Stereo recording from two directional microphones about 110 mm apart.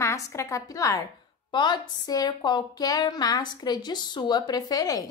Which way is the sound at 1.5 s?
40° left (ahead or behind).